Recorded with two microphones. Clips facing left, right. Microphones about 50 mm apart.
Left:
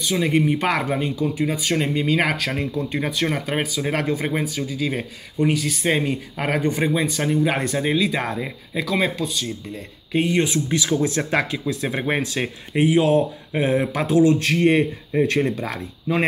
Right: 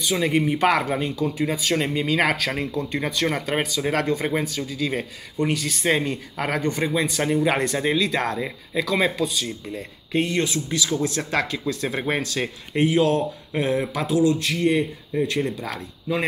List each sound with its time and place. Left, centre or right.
0.0 s speech: centre
7.1 s speech: centre
10.3 s speech: left